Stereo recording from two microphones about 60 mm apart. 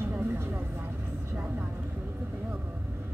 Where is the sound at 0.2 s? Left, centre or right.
Right.